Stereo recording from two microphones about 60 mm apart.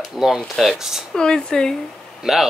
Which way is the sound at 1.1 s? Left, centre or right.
Centre.